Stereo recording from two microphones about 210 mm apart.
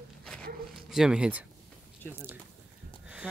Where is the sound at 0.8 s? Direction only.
Centre (ahead or behind).